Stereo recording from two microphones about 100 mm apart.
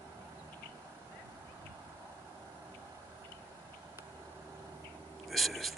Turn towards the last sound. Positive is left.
turn(degrees=0)  # may be behind; listen again after turning